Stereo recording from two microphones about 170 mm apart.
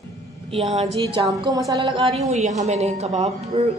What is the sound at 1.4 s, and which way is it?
Speech, 20° right (ahead or behind).